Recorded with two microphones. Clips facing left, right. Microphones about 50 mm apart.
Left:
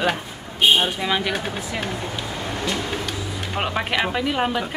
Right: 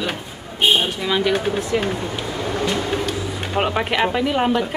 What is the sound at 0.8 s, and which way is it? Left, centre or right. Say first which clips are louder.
Speech: right 2 dB; centre.